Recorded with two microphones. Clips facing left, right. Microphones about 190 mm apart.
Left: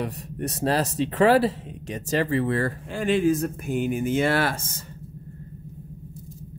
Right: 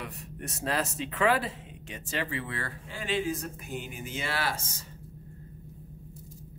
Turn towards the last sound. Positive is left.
turn(degrees=55)  # may be behind; listen again after turning